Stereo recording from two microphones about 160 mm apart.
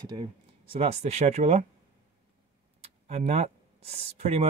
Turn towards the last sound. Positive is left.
turn(degrees=-40)  # may be behind; listen again after turning